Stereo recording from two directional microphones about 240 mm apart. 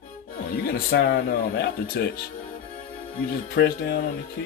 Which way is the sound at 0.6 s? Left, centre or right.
Left.